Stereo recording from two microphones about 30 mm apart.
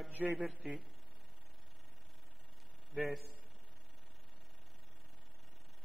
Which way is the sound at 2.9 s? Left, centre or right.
Centre.